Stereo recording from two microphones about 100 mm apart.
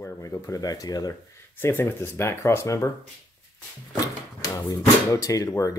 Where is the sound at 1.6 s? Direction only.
20° left (ahead or behind).